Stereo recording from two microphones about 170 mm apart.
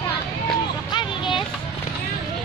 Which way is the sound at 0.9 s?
30° left (ahead or behind).